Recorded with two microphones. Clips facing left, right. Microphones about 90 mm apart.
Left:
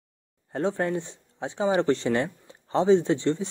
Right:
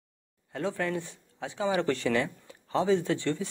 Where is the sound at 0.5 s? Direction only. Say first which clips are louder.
Left 5 dB; 30° left (ahead or behind).